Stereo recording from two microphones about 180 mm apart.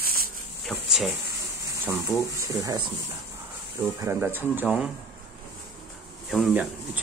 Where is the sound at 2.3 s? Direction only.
15° right (ahead or behind).